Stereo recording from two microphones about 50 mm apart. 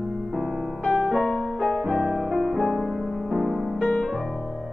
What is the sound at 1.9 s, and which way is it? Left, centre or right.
Music, centre.